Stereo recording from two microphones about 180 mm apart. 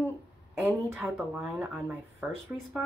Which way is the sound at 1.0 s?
Centre (ahead or behind).